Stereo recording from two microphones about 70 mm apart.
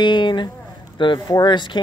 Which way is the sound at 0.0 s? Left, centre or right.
Left.